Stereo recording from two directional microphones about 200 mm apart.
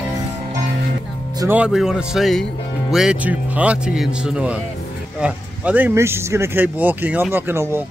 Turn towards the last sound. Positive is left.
turn(degrees=-10)  # may be behind; listen again after turning